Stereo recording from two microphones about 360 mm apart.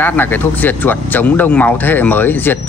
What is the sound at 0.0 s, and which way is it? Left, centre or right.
Speech, centre.